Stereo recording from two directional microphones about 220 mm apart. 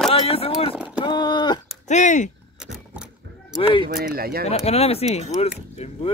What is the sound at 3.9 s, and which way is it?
Speech, 45° right (ahead or behind).